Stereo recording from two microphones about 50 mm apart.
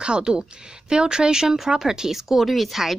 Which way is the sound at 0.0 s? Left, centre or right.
Centre.